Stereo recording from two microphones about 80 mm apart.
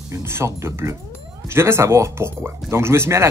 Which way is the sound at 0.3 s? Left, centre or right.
Right.